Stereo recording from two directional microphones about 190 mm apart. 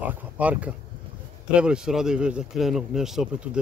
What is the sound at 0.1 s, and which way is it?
Speech, 5° right (ahead or behind).